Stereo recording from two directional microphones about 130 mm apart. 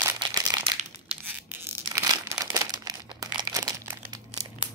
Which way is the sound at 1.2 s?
15° right (ahead or behind).